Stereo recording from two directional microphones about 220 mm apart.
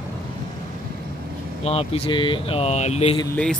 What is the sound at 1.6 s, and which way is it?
Speech, 25° left (ahead or behind).